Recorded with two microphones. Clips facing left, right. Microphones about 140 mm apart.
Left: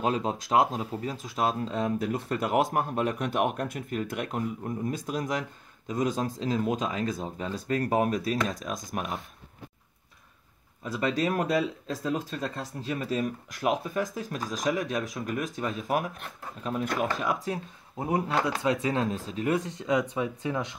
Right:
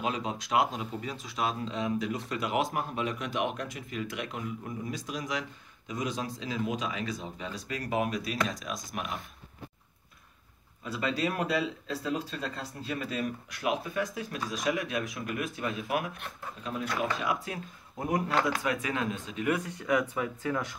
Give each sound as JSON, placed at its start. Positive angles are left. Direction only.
{"t": 0.0, "sound": "speech", "side_deg": 40}
{"t": 10.8, "sound": "speech", "side_deg": 45}
{"t": 17.9, "sound": "speech", "side_deg": 30}